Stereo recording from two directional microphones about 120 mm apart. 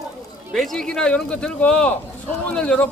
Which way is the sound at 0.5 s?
5° left (ahead or behind).